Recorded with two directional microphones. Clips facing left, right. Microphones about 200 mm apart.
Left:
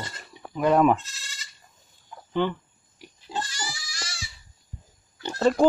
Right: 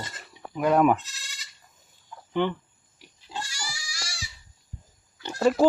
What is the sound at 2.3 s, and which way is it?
Speech, 15° right (ahead or behind).